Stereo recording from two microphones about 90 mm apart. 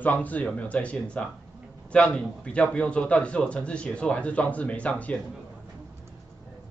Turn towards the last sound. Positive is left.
turn(degrees=15)  # may be behind; listen again after turning